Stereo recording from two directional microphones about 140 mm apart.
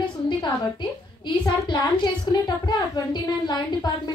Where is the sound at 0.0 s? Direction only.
35° left (ahead or behind).